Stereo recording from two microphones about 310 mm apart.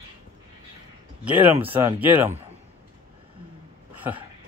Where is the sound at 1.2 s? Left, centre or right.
Centre.